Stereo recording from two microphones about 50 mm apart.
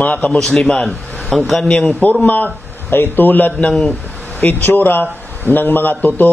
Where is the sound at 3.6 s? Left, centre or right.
Centre.